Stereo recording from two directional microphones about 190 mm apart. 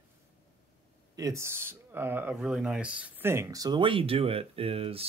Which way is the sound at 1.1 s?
15° right (ahead or behind).